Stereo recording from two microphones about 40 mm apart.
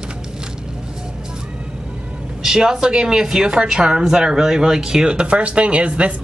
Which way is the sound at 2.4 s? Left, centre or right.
Centre.